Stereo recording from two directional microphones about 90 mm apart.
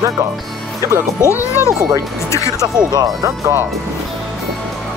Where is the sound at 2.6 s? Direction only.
50° right (ahead or behind).